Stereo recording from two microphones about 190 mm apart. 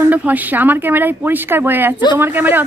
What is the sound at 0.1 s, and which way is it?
Speech, 10° right (ahead or behind).